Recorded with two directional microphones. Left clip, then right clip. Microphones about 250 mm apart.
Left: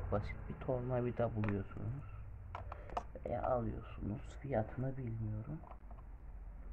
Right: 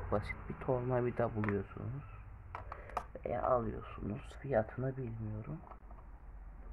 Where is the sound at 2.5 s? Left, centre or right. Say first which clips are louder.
Right 2 dB; centre.